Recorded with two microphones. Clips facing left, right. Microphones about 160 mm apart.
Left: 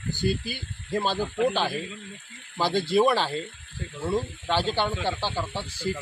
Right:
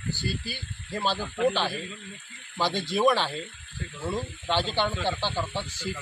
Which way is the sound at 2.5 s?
10° left (ahead or behind).